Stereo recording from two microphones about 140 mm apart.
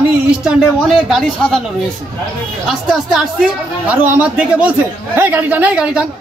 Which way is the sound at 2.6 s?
5° right (ahead or behind).